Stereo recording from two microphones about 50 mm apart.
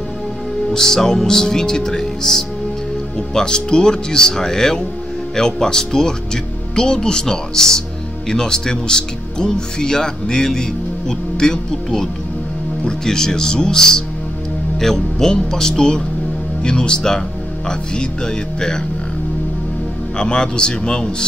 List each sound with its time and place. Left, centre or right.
0.7 s speech: centre
20.2 s speech: centre